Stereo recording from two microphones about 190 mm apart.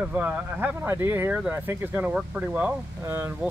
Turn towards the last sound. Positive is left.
turn(degrees=-10)  # may be behind; listen again after turning